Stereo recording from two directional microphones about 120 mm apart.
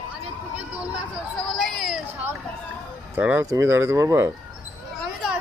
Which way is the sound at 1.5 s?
Centre (ahead or behind).